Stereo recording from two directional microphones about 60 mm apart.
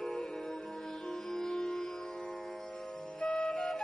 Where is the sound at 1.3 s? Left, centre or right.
Centre.